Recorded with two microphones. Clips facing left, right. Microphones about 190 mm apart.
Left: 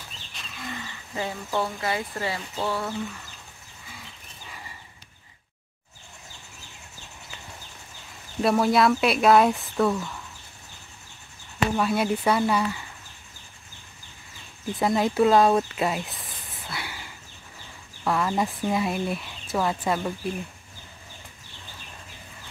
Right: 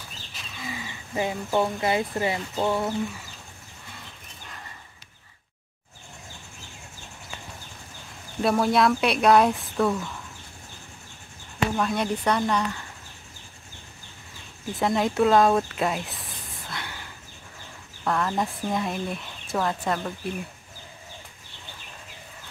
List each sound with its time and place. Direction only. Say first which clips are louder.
0.4 s speech: right 1 dB; centre (ahead or behind); by 2.9 s 20° right (ahead or behind)
8.4 s speech: left 1 dB; centre (ahead or behind)
11.7 s speech: left 3 dB; 5° left (ahead or behind)
14.8 s speech: left 1 dB; centre (ahead or behind)
18.0 s speech: left 1 dB; 5° left (ahead or behind)